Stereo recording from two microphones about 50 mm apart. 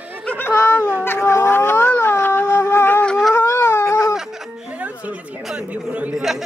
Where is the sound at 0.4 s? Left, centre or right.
Left.